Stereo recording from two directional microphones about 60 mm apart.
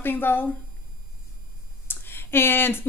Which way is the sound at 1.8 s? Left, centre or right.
Left.